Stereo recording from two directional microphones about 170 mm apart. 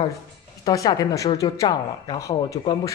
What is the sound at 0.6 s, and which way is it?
Speech, 20° left (ahead or behind).